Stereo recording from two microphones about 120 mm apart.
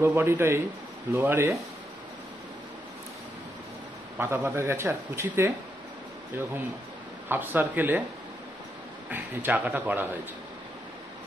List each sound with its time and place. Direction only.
0.0 s speech: 20° right (ahead or behind)
4.2 s speech: 20° right (ahead or behind)
7.2 s a man's voice: 15° right (ahead or behind)
9.1 s a man's voice: 15° right (ahead or behind)